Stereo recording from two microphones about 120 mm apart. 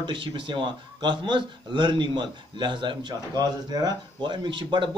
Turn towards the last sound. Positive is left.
turn(degrees=-40)  # may be behind; listen again after turning